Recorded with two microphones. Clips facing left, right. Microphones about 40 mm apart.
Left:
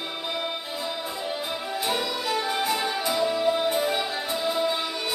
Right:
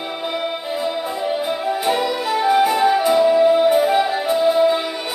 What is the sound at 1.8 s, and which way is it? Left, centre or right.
Music, centre.